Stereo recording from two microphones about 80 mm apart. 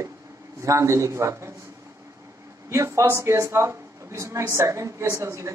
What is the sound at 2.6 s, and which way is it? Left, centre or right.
Speech, right.